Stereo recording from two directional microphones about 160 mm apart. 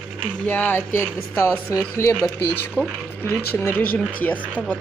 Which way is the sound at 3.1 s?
15° left (ahead or behind).